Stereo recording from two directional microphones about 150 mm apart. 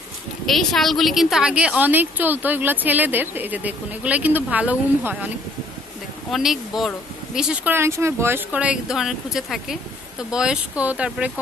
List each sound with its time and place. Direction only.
0.5 s a woman's voice: centre (ahead or behind)
6.3 s a woman's voice: centre (ahead or behind)